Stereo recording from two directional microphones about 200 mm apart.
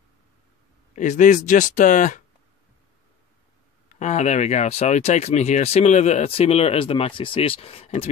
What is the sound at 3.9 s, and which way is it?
Speech, 35° left (ahead or behind).